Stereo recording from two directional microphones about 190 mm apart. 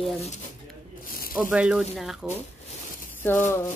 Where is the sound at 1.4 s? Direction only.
5° right (ahead or behind).